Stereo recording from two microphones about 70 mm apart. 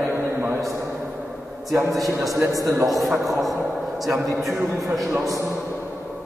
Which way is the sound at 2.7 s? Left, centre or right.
Centre.